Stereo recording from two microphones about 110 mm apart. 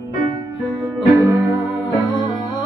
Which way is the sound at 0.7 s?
30° right (ahead or behind).